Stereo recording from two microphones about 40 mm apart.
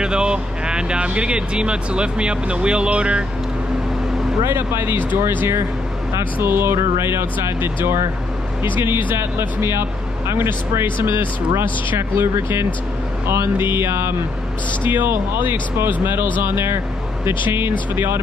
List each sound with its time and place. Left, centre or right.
0.0 s speech: right
4.5 s speech: right
14.9 s speech: right